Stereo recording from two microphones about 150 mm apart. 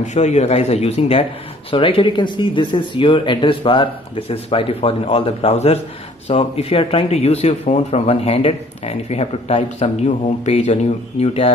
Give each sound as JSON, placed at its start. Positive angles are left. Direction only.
{"t": 0.0, "sound": "speech", "side_deg": 50}